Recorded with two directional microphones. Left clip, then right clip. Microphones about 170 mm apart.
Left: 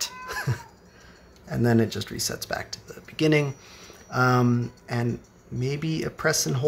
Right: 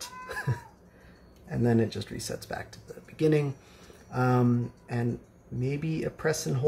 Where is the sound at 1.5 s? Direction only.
35° left (ahead or behind).